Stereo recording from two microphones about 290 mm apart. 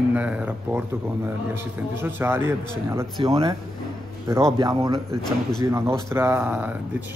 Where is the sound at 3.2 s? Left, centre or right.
Centre.